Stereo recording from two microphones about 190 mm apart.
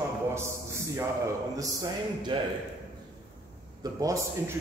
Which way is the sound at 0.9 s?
15° right (ahead or behind).